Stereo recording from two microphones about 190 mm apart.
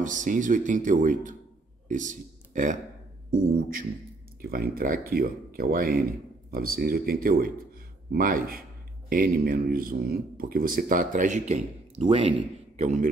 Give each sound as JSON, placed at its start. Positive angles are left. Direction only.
{"t": 0.0, "sound": "a man's voice", "side_deg": -40}
{"t": 12.7, "sound": "a man's voice", "side_deg": -40}